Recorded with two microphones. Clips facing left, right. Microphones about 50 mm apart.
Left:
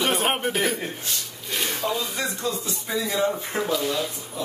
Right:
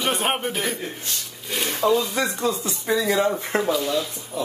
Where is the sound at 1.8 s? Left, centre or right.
Right.